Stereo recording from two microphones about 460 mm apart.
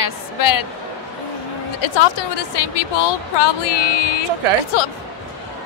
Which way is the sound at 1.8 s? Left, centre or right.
Left.